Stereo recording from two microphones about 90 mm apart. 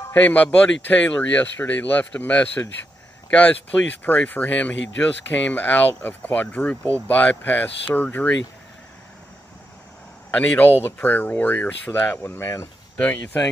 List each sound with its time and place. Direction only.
0.1 s speech: 20° left (ahead or behind)
10.3 s speech: 15° left (ahead or behind)
12.4 s speech: 30° left (ahead or behind)
13.0 s speech: 15° left (ahead or behind)